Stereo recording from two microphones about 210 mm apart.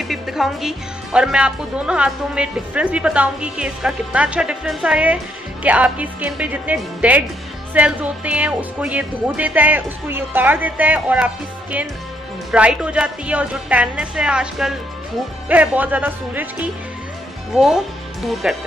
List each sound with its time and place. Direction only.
0.0 s a woman's voice: centre (ahead or behind)
17.6 s speech: centre (ahead or behind)